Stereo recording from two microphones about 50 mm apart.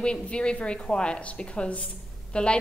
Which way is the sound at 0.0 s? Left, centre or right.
Left.